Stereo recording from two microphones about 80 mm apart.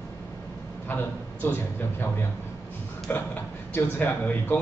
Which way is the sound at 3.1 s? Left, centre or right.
Left.